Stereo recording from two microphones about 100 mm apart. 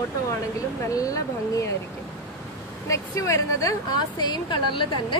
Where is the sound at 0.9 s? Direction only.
35° left (ahead or behind).